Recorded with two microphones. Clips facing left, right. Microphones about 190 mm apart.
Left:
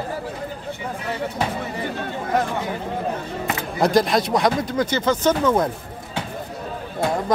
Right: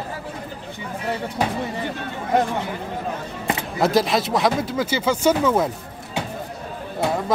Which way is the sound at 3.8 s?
Centre (ahead or behind).